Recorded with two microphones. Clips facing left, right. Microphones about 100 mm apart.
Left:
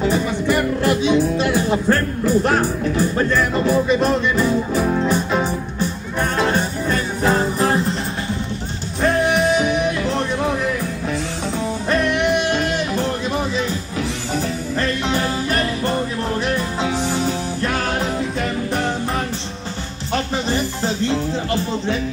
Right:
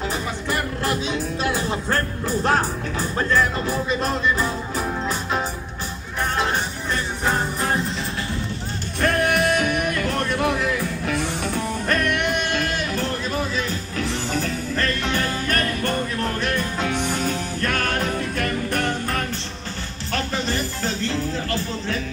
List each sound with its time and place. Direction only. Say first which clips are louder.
4.7 s music: left 7 dB; centre (ahead or behind)
6.9 s music: left 5 dB; 5° left (ahead or behind)
9.0 s music: left 3 dB; 15° left (ahead or behind)
11.5 s music: left 5 dB; 15° left (ahead or behind)
13.9 s music: even; centre (ahead or behind)
15.0 s music: left 3 dB; 15° left (ahead or behind)
20.1 s music: left 4 dB; 35° left (ahead or behind)